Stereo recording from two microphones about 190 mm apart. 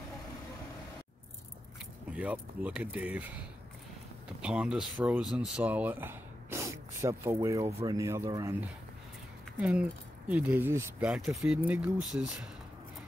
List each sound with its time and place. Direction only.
2.0 s speech: 5° right (ahead or behind)
9.6 s speech: 5° right (ahead or behind)